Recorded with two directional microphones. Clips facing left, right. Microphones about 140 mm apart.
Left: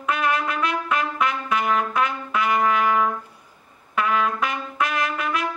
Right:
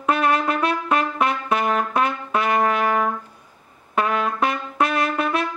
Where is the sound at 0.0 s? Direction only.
35° right (ahead or behind).